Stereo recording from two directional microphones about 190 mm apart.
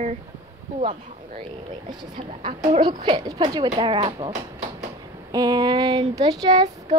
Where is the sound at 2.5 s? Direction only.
25° right (ahead or behind).